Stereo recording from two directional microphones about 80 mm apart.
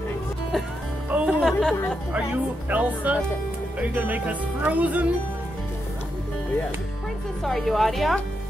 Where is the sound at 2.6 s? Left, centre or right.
Centre.